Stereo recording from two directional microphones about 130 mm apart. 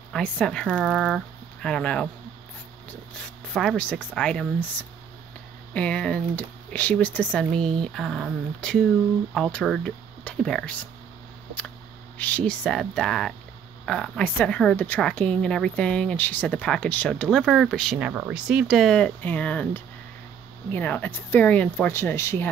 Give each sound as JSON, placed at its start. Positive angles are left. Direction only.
{"t": 0.1, "sound": "a woman's voice", "side_deg": 5}
{"t": 3.5, "sound": "a woman's voice", "side_deg": 5}
{"t": 5.7, "sound": "a woman's voice", "side_deg": 10}
{"t": 12.2, "sound": "a woman's voice", "side_deg": 10}